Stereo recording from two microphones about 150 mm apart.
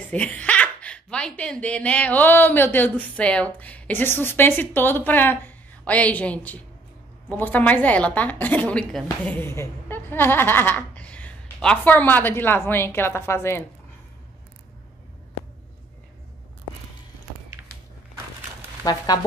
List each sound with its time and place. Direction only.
0.1 s a woman's voice: 10° left (ahead or behind)
19.1 s speech: 25° left (ahead or behind)